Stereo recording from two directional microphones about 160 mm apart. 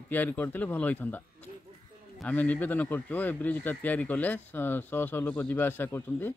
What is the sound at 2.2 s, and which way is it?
Speech, 10° left (ahead or behind).